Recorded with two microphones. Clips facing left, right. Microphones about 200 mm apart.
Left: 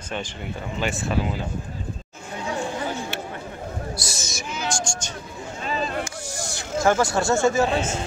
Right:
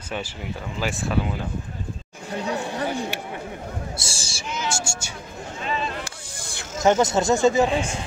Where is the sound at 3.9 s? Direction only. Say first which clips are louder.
Left 2 dB; 30° right (ahead or behind).